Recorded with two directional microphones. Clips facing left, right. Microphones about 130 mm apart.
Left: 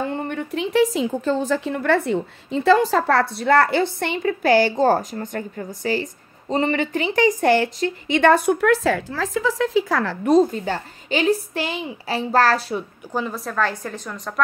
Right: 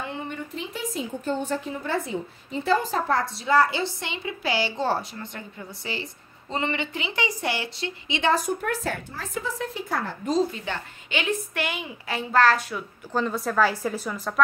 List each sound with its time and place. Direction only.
0.1 s a woman's voice: 60° left (ahead or behind); by 12.8 s 35° left (ahead or behind)
13.1 s a woman's voice: 5° left (ahead or behind)